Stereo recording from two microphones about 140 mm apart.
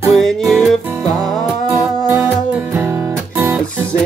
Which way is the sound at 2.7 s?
15° right (ahead or behind).